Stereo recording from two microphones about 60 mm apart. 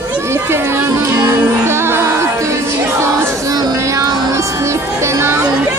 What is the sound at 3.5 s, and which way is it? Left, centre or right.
Music, right.